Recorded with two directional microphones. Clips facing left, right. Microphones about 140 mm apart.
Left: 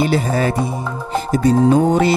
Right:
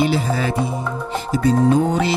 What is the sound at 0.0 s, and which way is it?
Music, 50° left (ahead or behind).